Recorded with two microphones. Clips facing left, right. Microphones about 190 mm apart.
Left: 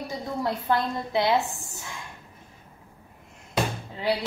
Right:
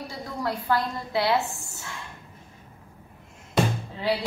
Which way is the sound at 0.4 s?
20° left (ahead or behind).